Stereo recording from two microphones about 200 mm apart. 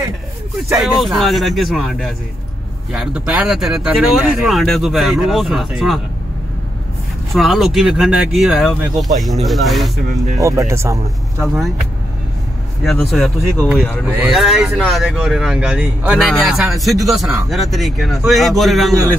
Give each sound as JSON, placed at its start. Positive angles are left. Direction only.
{"t": 0.7, "sound": "speech", "side_deg": 0}
{"t": 7.3, "sound": "speech", "side_deg": 0}
{"t": 10.3, "sound": "speech", "side_deg": -15}
{"t": 11.4, "sound": "speech", "side_deg": 0}
{"t": 12.8, "sound": "speech", "side_deg": 0}